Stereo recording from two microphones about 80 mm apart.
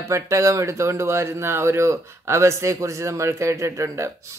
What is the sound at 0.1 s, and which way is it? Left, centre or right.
Speech, right.